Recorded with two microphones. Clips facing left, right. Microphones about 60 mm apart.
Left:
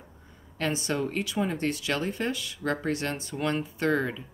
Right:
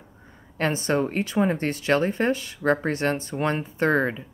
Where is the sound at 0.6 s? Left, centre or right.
Right.